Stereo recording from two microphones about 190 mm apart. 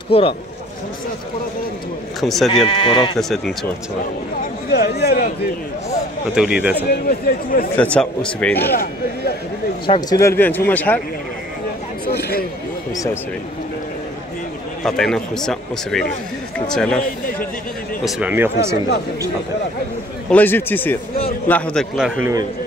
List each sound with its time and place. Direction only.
0.1 s speech: 30° left (ahead or behind)
2.1 s speech: centre (ahead or behind)
2.5 s speech: 30° left (ahead or behind)
3.2 s speech: centre (ahead or behind)
4.6 s speech: 55° left (ahead or behind)
6.3 s speech: 5° right (ahead or behind)
6.9 s speech: 55° left (ahead or behind)
7.7 s speech: 5° left (ahead or behind)
9.8 s speech: 20° left (ahead or behind)
12.1 s a sound: 55° left (ahead or behind)
14.8 s speech: centre (ahead or behind)
18.0 s speech: 10° right (ahead or behind)
20.2 s speech: 10° left (ahead or behind)